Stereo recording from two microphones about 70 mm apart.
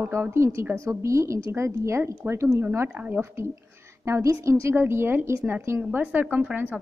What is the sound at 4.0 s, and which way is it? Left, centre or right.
A woman's voice, right.